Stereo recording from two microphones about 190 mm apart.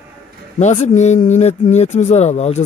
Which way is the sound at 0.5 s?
40° left (ahead or behind).